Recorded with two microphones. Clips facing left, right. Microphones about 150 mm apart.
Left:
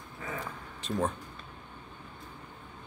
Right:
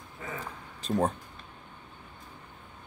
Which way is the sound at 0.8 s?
35° right (ahead or behind).